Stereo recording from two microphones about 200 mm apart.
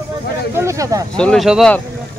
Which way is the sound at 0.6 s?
15° right (ahead or behind).